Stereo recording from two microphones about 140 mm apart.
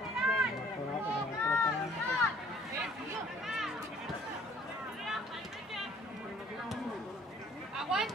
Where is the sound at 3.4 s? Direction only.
Centre (ahead or behind).